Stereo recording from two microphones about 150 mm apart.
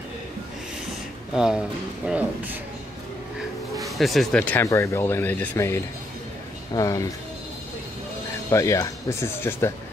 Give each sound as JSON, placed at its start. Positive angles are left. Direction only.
{"t": 1.3, "sound": "speech", "side_deg": -5}
{"t": 3.8, "sound": "speech", "side_deg": 0}
{"t": 8.5, "sound": "speech", "side_deg": 20}